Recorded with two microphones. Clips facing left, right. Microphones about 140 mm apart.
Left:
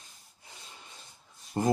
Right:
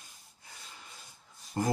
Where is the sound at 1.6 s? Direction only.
20° left (ahead or behind).